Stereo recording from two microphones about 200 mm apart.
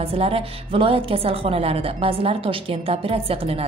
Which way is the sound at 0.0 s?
30° right (ahead or behind).